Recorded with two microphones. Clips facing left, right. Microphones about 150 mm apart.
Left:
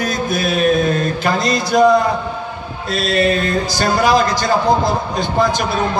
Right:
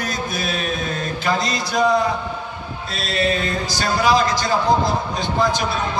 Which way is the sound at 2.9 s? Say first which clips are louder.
Left 6 dB; 55° left (ahead or behind).